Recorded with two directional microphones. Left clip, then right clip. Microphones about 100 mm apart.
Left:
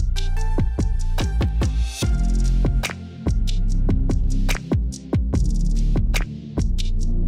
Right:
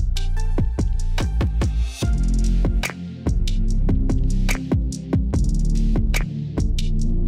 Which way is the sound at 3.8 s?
20° right (ahead or behind).